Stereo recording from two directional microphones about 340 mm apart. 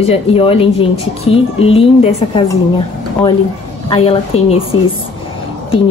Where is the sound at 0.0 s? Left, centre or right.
Centre.